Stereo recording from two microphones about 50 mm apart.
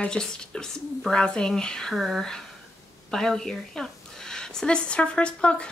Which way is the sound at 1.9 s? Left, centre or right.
Centre.